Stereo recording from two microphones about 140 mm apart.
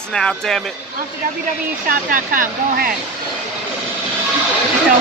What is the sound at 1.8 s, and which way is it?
Speech, 80° right.